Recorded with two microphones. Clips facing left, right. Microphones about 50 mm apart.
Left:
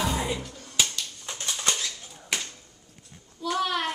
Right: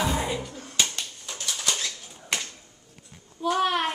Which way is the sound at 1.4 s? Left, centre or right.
Left.